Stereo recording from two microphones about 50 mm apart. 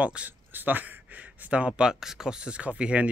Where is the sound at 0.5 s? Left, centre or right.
Right.